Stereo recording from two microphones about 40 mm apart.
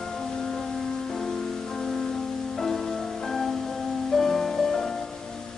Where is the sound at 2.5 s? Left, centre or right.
Centre.